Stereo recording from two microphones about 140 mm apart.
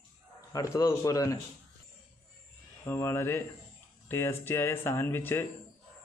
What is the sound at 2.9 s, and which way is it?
Speech, 20° left (ahead or behind).